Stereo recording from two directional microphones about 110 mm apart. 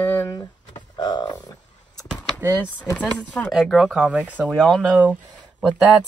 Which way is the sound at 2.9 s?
10° left (ahead or behind).